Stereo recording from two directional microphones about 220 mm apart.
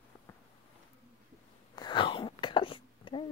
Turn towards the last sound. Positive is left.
turn(degrees=25)  # may be behind; listen again after turning